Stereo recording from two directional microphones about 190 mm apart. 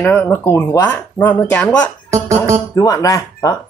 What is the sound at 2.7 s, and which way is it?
Speech, 20° left (ahead or behind).